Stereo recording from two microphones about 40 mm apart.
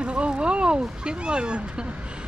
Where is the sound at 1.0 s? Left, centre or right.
Right.